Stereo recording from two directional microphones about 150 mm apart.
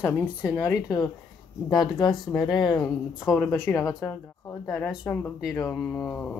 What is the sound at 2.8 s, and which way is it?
Speech, 10° left (ahead or behind).